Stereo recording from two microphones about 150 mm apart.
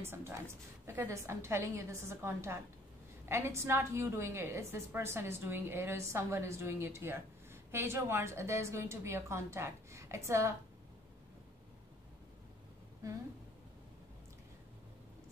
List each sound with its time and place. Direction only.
0.0 s a woman's voice: 15° right (ahead or behind)